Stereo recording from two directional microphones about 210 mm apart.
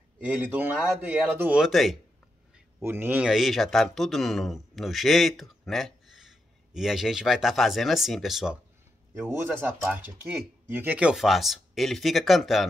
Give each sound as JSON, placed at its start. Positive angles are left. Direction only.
{"t": 0.2, "sound": "a man's voice", "side_deg": -5}
{"t": 2.8, "sound": "speech", "side_deg": -10}